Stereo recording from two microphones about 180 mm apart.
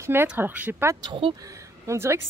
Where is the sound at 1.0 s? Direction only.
30° right (ahead or behind).